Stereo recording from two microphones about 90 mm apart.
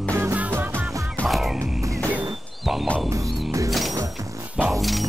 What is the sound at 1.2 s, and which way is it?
Music, centre (ahead or behind).